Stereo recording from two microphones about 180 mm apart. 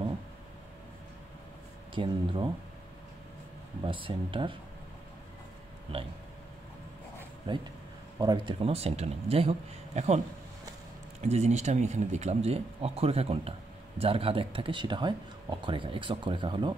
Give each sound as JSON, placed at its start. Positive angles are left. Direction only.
{"t": 2.0, "sound": "speech", "side_deg": -25}
{"t": 3.8, "sound": "speech", "side_deg": -30}
{"t": 5.9, "sound": "speech", "side_deg": -30}
{"t": 7.5, "sound": "speech", "side_deg": -30}